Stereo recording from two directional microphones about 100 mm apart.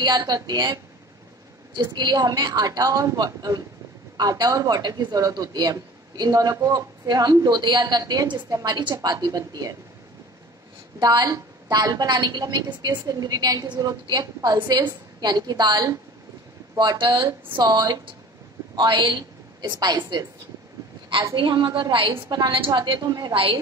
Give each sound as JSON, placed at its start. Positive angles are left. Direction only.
{"t": 0.0, "sound": "a woman's voice", "side_deg": -45}
{"t": 1.8, "sound": "speech", "side_deg": -45}
{"t": 11.0, "sound": "a woman's voice", "side_deg": -45}
{"t": 21.4, "sound": "a woman's voice", "side_deg": -55}
{"t": 21.6, "sound": "speech", "side_deg": -40}
{"t": 22.5, "sound": "a woman's voice", "side_deg": -50}
{"t": 23.3, "sound": "a woman's voice", "side_deg": -60}